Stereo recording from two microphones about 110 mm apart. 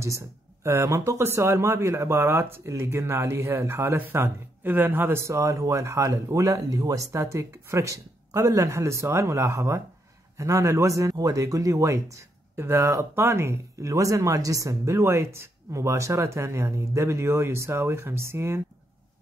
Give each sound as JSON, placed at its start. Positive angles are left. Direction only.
{"t": 0.7, "sound": "speech", "side_deg": -25}